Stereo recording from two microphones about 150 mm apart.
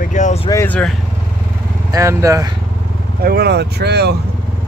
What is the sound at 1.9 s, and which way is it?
Speech, 20° right (ahead or behind).